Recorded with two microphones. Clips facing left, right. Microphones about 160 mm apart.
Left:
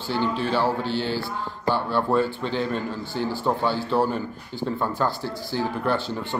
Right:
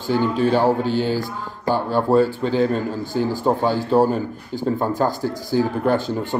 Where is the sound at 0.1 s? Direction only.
45° right (ahead or behind).